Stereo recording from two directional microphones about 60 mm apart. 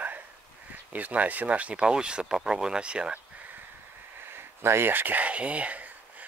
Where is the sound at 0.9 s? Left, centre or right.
Right.